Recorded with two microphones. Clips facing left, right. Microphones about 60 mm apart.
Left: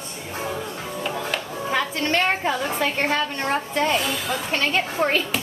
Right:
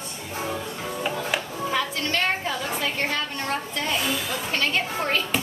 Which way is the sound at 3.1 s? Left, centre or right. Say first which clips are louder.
Left 4 dB; left.